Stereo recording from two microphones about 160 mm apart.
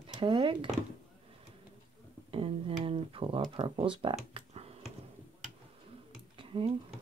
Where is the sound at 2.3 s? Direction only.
35° right (ahead or behind).